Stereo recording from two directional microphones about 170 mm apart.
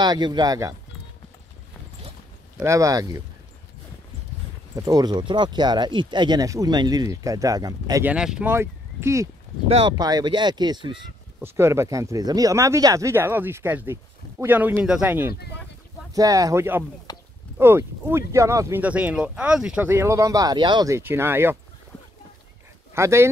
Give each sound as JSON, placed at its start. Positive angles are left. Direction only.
{"t": 0.0, "sound": "speech", "side_deg": -25}
{"t": 2.6, "sound": "speech", "side_deg": -20}
{"t": 4.7, "sound": "speech", "side_deg": -20}
{"t": 8.0, "sound": "speech", "side_deg": -5}
{"t": 9.7, "sound": "speech", "side_deg": -35}
{"t": 9.9, "sound": "speech", "side_deg": -25}
{"t": 11.4, "sound": "speech", "side_deg": -15}
{"t": 17.1, "sound": "a sound", "side_deg": 20}
{"t": 17.6, "sound": "speech", "side_deg": -15}
{"t": 19.9, "sound": "speech", "side_deg": -15}
{"t": 22.9, "sound": "speech", "side_deg": -15}